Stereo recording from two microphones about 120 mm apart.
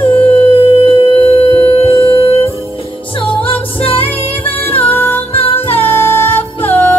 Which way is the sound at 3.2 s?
50° left (ahead or behind).